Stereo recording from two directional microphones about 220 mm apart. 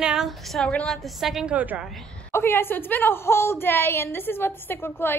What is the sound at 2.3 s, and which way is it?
A woman's voice, 10° left (ahead or behind).